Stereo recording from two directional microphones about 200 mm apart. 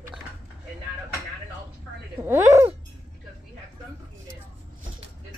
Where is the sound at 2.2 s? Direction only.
10° right (ahead or behind).